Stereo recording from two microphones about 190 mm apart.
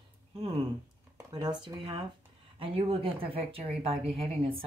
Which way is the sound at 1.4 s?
20° right (ahead or behind).